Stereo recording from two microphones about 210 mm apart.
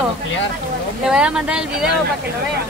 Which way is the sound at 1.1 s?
5° right (ahead or behind).